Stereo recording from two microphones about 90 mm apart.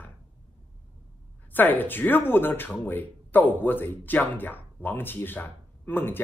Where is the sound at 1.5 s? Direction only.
20° left (ahead or behind).